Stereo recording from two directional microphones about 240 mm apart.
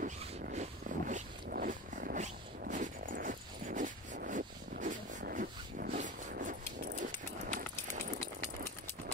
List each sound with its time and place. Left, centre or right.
0.0 s wild animals: right